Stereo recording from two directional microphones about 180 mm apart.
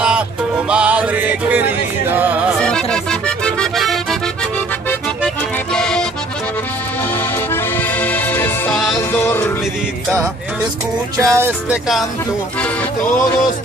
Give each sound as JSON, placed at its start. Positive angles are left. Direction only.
{"t": 0.7, "sound": "music", "side_deg": -5}
{"t": 2.6, "sound": "music", "side_deg": 5}
{"t": 5.2, "sound": "accordion", "side_deg": 5}
{"t": 7.5, "sound": "accordion", "side_deg": 10}
{"t": 9.1, "sound": "music", "side_deg": 10}
{"t": 11.1, "sound": "music", "side_deg": -15}
{"t": 13.0, "sound": "music", "side_deg": 45}